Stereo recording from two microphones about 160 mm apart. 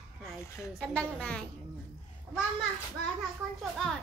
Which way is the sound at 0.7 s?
5° left (ahead or behind).